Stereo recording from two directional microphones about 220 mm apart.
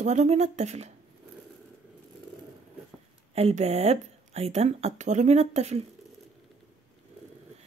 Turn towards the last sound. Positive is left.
turn(degrees=-30)  # may be behind; listen again after turning